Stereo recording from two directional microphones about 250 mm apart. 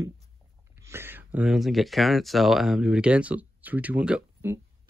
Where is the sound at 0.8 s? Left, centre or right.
Centre.